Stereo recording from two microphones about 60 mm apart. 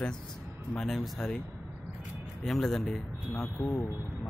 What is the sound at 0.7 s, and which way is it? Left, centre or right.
Speech, centre.